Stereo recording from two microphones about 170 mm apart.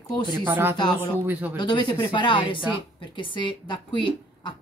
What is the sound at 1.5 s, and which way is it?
Speech, 25° left (ahead or behind).